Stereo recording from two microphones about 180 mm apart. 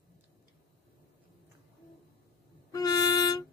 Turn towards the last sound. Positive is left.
turn(degrees=20)  # may be behind; listen again after turning